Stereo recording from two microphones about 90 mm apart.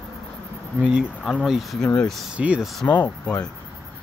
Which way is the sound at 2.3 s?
15° right (ahead or behind).